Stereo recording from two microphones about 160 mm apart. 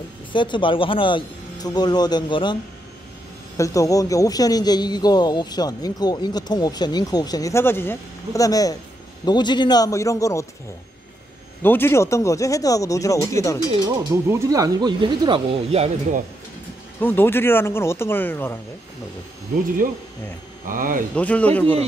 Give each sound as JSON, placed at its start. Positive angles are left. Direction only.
{"t": 0.3, "sound": "a man's voice", "side_deg": 30}
{"t": 3.5, "sound": "a man's voice", "side_deg": 20}
{"t": 11.6, "sound": "a man's voice", "side_deg": 15}
{"t": 13.8, "sound": "speech", "side_deg": -15}
{"t": 17.0, "sound": "speech", "side_deg": 15}
{"t": 20.6, "sound": "speech", "side_deg": -60}
{"t": 21.1, "sound": "speech", "side_deg": 10}